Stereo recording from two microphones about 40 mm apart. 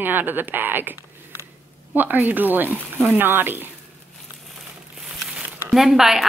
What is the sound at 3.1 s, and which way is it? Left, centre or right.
Speech, right.